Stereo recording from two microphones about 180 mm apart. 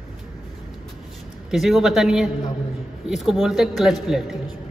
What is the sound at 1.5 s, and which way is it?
Speech, centre (ahead or behind).